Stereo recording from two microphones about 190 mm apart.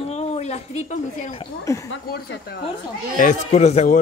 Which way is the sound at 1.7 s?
15° left (ahead or behind).